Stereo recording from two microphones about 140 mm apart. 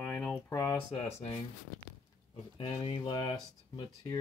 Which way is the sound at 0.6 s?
20° left (ahead or behind).